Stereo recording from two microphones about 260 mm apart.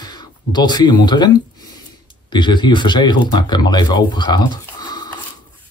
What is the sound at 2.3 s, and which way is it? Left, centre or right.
Speech, centre.